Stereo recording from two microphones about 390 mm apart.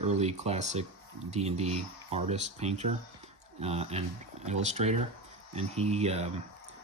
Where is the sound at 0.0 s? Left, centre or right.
Centre.